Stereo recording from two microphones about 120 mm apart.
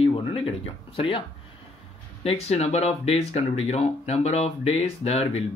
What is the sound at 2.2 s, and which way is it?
Speech, 60° left (ahead or behind).